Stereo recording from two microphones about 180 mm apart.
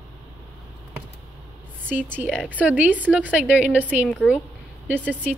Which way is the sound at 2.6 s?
10° right (ahead or behind).